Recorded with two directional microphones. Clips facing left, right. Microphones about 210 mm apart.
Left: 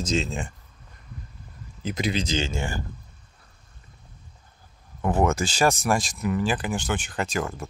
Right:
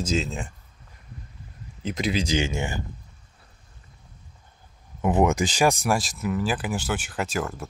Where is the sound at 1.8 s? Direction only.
Centre (ahead or behind).